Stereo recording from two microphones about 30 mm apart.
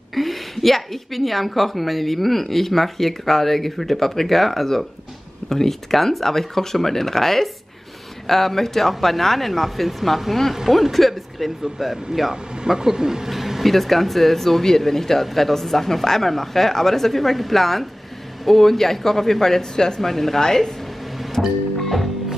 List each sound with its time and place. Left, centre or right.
0.1 s a woman's voice: centre; by 13.3 s right
13.3 s a sound: centre
13.7 s speech: centre; by 20.1 s left
20.1 s speech: centre
21.4 s speech: centre